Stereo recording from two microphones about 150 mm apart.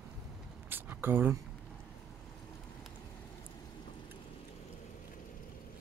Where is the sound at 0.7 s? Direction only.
15° right (ahead or behind).